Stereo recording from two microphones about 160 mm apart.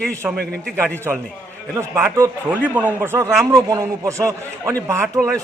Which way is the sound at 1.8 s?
20° right (ahead or behind).